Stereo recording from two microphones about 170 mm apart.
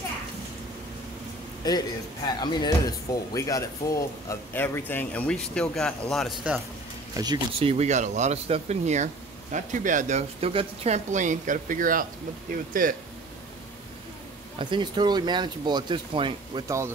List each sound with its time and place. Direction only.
1.6 s a man's voice: 25° left (ahead or behind); by 6.6 s 5° right (ahead or behind)
7.5 s speech: 35° right (ahead or behind); by 12.9 s 55° right (ahead or behind)
14.6 s speech: 25° right (ahead or behind)
16.6 s speech: 15° right (ahead or behind)